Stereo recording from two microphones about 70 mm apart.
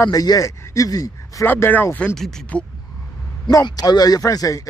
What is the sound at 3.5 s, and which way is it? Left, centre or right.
Speech, left.